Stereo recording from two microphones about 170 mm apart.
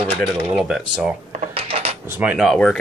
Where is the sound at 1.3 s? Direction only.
40° right (ahead or behind).